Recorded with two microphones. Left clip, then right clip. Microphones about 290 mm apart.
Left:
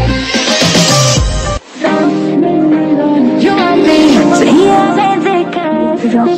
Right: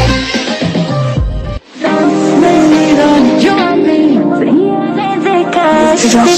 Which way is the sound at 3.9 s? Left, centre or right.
Left.